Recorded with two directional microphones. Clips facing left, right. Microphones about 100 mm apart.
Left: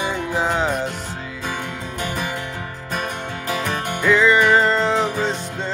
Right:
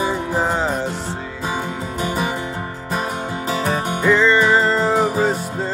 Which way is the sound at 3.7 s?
5° right (ahead or behind).